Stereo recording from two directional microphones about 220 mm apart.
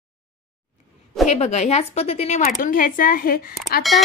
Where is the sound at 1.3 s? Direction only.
30° left (ahead or behind).